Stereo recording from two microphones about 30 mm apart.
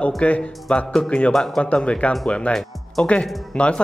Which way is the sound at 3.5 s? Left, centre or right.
Left.